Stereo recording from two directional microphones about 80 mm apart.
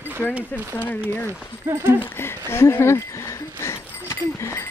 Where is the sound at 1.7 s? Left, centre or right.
Right.